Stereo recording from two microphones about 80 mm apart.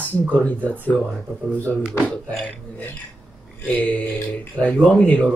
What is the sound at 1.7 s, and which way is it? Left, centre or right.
Speech, centre.